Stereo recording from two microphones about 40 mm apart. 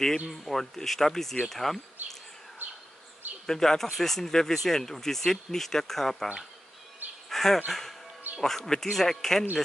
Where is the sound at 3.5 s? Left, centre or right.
Centre.